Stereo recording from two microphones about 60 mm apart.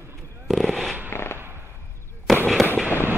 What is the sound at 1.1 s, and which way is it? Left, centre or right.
Fireworks, left.